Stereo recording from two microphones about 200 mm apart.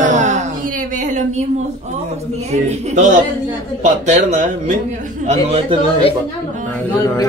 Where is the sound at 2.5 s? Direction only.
40° right (ahead or behind).